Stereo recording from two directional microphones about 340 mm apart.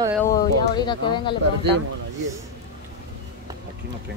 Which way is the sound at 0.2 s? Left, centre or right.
Centre.